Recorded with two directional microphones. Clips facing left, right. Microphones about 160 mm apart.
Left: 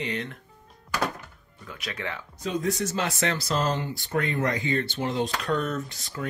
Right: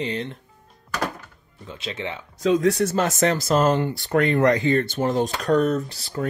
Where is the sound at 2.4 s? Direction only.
90° right.